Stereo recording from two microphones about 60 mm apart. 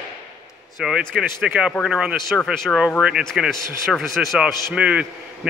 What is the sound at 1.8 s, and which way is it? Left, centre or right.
Speech, centre.